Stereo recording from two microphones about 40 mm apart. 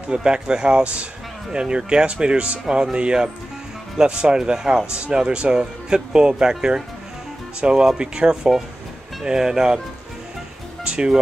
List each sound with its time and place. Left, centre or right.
0.1 s speech: right
10.8 s music: right